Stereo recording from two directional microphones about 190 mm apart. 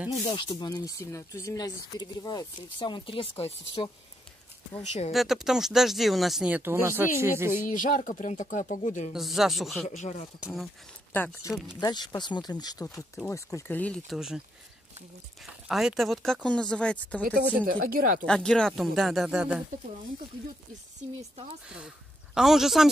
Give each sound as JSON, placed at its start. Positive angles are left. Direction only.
{"t": 0.3, "sound": "speech", "side_deg": 20}
{"t": 5.1, "sound": "speech", "side_deg": 0}
{"t": 7.5, "sound": "speech", "side_deg": 45}
{"t": 9.1, "sound": "speech", "side_deg": 0}
{"t": 9.8, "sound": "speech", "side_deg": 35}
{"t": 10.4, "sound": "speech", "side_deg": 0}
{"t": 11.1, "sound": "speech", "side_deg": 10}
{"t": 11.8, "sound": "speech", "side_deg": 20}
{"t": 12.8, "sound": "speech", "side_deg": 5}
{"t": 15.4, "sound": "speech", "side_deg": 0}
{"t": 17.6, "sound": "speech", "side_deg": -50}
{"t": 18.2, "sound": "speech", "side_deg": 5}
{"t": 21.6, "sound": "speech", "side_deg": -5}